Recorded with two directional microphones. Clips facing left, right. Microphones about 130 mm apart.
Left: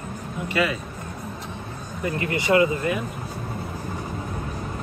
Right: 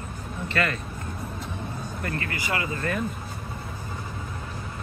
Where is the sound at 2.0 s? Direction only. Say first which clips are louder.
Left 8 dB; 20° left (ahead or behind).